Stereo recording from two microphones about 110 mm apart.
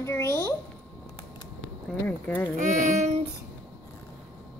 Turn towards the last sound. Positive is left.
turn(degrees=-90)